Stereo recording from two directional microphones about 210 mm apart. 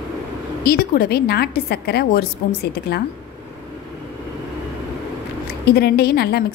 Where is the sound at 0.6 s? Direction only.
45° left (ahead or behind).